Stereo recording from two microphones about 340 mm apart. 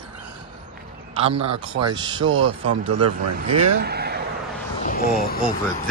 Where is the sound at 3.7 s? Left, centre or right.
Right.